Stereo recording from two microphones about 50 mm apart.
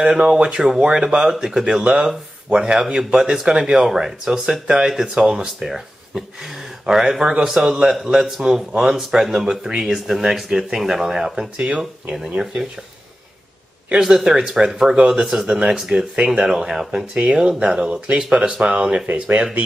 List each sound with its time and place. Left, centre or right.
0.0 s speech: centre
13.9 s speech: centre